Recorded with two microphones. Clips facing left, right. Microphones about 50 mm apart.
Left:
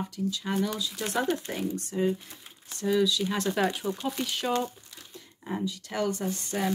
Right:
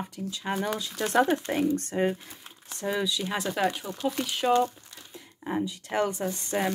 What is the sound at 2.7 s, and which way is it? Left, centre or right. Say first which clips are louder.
Speech: left 4 dB; right.